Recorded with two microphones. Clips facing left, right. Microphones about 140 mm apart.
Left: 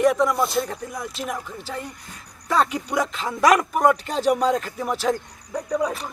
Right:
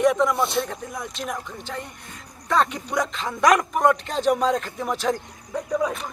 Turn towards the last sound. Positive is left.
turn(degrees=0)  # may be behind; listen again after turning